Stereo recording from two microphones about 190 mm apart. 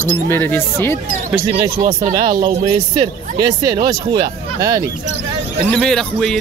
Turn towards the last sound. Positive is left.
turn(degrees=5)  # may be behind; listen again after turning